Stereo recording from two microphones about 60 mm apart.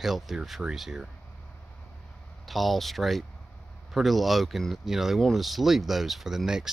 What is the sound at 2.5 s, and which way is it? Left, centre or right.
Speech, centre.